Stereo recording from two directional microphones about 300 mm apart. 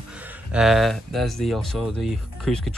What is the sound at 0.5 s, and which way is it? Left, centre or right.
Speech, centre.